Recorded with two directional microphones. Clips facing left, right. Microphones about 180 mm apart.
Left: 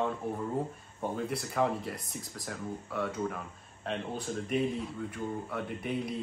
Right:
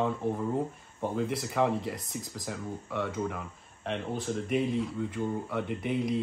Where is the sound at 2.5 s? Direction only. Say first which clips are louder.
Even; 10° right (ahead or behind).